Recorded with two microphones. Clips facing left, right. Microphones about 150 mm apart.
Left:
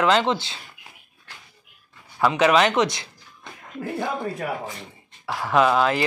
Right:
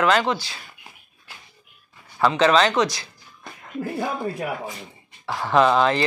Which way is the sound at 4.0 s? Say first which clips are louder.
Even; 10° right (ahead or behind).